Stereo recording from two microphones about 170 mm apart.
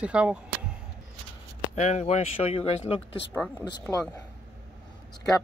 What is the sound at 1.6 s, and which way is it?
Speech, 45° left (ahead or behind).